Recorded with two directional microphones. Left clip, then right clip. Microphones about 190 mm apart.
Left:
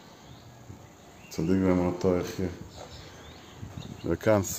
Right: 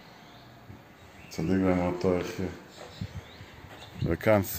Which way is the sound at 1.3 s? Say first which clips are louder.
Left 1 dB; 10° left (ahead or behind).